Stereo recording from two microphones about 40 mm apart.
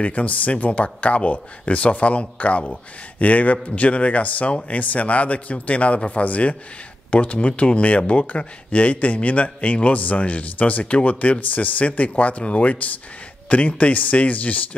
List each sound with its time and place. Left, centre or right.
0.0 s a man's voice: left